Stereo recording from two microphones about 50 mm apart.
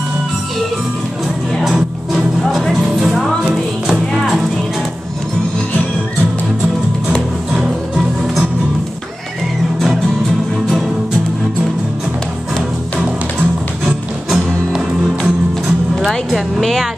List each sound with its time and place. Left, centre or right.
1.6 s music: centre
7.1 s music: centre
13.8 s music: centre
16.3 s a woman's voice: centre